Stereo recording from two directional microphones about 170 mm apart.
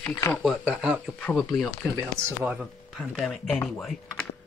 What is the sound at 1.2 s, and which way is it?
Speech, 5° left (ahead or behind).